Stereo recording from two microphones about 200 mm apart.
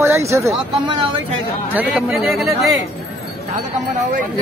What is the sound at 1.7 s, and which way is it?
Speech, 5° right (ahead or behind).